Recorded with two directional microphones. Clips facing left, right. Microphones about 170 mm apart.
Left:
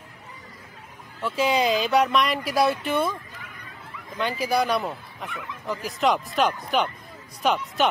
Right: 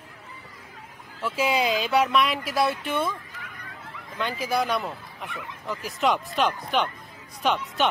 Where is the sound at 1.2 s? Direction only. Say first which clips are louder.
Left 2 dB; 5° right (ahead or behind).